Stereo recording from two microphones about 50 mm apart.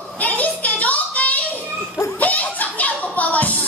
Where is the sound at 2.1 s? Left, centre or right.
Left.